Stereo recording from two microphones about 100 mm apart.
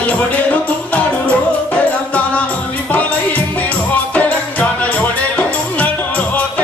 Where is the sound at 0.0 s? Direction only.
15° left (ahead or behind).